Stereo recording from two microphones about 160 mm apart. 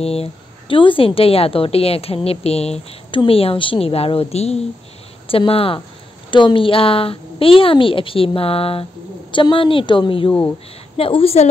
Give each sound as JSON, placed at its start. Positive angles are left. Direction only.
{"t": 0.0, "sound": "a woman's voice", "side_deg": 40}